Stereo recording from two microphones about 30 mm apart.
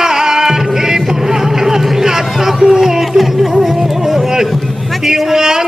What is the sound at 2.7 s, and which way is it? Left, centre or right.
Music, centre.